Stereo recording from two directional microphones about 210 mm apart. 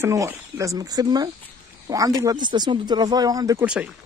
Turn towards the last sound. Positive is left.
turn(degrees=-5)  # may be behind; listen again after turning